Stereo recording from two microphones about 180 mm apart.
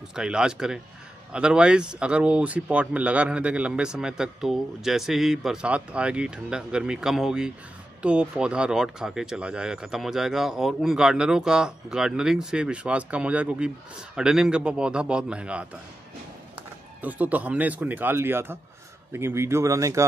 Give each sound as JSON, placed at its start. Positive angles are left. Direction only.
{"t": 0.1, "sound": "speech", "side_deg": -5}
{"t": 17.0, "sound": "speech", "side_deg": -10}